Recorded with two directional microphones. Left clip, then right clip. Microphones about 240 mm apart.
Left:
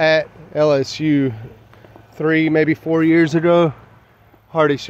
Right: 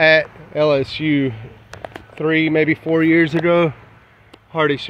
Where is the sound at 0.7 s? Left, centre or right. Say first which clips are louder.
Even; left.